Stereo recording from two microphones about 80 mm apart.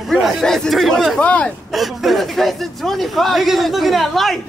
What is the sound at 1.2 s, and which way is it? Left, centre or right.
Speech, centre.